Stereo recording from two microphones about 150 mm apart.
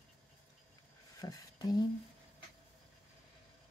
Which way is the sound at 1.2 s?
25° left (ahead or behind).